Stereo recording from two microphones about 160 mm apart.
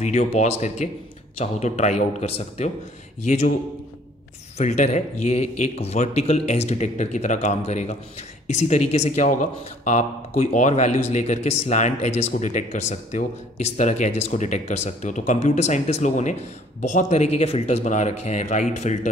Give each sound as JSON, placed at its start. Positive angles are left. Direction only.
{"t": 0.0, "sound": "speech", "side_deg": 45}
{"t": 3.3, "sound": "speech", "side_deg": 50}
{"t": 4.6, "sound": "speech", "side_deg": 45}